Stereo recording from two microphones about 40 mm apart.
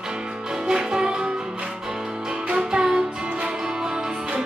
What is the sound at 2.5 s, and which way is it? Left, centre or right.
Music, centre.